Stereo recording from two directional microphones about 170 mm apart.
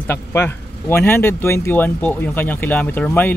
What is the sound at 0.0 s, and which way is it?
Speech, 15° left (ahead or behind).